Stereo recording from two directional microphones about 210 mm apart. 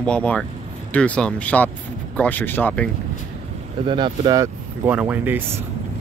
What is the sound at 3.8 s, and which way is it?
Speech, 20° right (ahead or behind).